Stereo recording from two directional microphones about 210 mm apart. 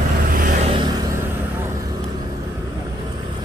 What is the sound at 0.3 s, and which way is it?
Vehicle, 40° right (ahead or behind).